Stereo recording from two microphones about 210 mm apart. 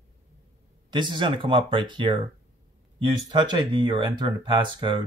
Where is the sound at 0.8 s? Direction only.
20° right (ahead or behind).